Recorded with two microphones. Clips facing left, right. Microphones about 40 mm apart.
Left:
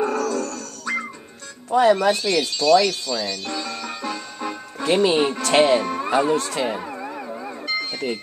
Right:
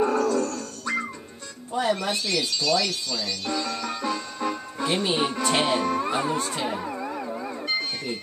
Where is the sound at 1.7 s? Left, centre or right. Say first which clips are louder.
Left 9 dB; left.